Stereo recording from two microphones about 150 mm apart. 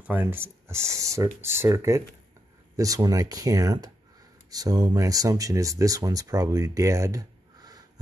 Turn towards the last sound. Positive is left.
turn(degrees=-25)  # may be behind; listen again after turning